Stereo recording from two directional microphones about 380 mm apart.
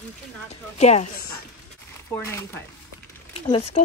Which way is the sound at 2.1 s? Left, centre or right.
Centre.